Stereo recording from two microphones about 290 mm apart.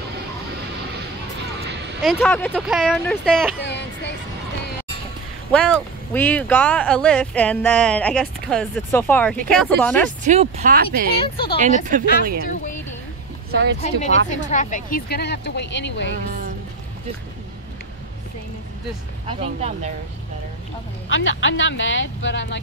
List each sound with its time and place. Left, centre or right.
2.0 s speech: centre
3.6 s child singing: left
5.5 s speech: centre
10.2 s speech: right
11.1 s speech: centre
11.6 s speech: right
13.5 s speech: right
13.7 s speech: left
19.2 s speech: right
21.1 s speech: left